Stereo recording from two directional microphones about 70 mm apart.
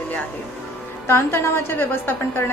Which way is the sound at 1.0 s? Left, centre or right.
Left.